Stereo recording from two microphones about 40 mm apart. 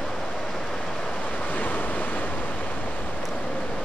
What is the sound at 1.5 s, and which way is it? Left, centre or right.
Waves, left.